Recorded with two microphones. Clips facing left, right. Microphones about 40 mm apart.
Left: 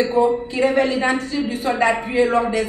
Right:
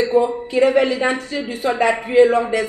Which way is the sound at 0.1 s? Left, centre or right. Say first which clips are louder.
Right 1 dB; right.